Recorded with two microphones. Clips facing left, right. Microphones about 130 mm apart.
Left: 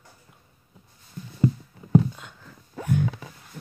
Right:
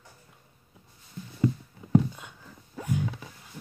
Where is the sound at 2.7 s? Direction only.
65° left (ahead or behind).